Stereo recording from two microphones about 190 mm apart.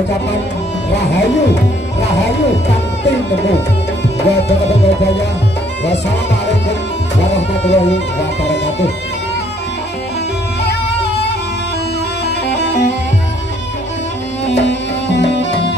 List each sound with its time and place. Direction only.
4.2 s music: 60° left (ahead or behind)
7.2 s music: 65° left (ahead or behind)
12.4 s music: 65° left (ahead or behind)
14.4 s music: 65° left (ahead or behind)